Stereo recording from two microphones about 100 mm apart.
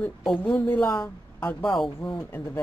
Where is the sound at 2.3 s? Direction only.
20° left (ahead or behind).